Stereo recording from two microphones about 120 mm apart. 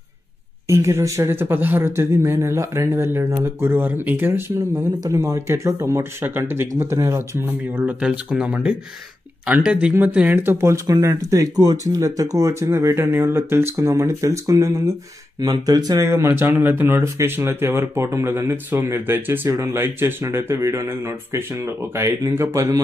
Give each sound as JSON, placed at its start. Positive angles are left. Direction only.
{"t": 0.7, "sound": "speech", "side_deg": -25}
{"t": 7.7, "sound": "speech", "side_deg": -10}
{"t": 16.1, "sound": "speech", "side_deg": -20}